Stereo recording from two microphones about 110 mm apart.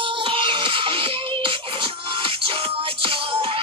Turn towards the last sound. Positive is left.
turn(degrees=-55)  # may be behind; listen again after turning